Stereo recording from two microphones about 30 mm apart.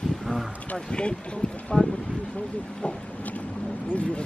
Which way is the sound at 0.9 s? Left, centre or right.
Left.